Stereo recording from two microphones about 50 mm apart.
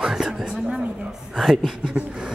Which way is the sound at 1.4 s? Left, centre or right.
Centre.